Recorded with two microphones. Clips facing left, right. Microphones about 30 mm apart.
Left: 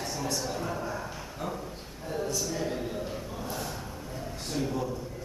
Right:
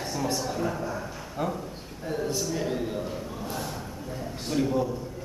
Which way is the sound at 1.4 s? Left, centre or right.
Right.